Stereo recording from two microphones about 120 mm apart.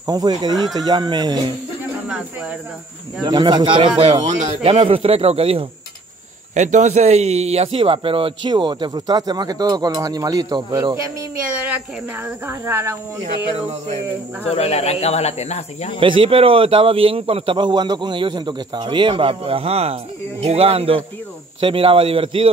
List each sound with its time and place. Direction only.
0.0 s speech: 35° right (ahead or behind)
3.3 s a man's voice: 40° right (ahead or behind)
6.5 s speech: 80° right; by 11.0 s 35° right (ahead or behind)
12.4 s speech: 20° right (ahead or behind)
14.5 s speech: 60° left (ahead or behind)
16.0 s a man's voice: 45° right (ahead or behind)